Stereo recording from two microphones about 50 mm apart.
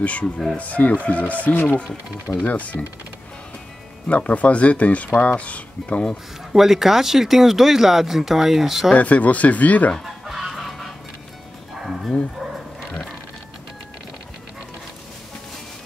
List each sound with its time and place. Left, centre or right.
0.0 s speech: left
1.5 s speech: left
2.4 s speech: left
4.1 s speech: left
6.5 s speech: centre
8.9 s speech: left
10.0 s fowl: centre
11.8 s bow-wow: centre